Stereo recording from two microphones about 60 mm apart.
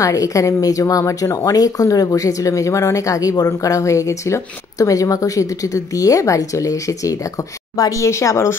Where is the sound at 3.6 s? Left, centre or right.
Left.